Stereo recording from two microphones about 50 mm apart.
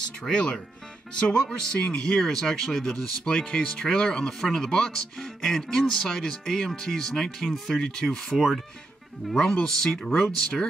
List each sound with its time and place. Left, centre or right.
0.3 s speech: centre
8.3 s speech: centre